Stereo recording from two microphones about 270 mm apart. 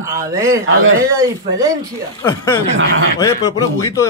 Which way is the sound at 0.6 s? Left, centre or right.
Right.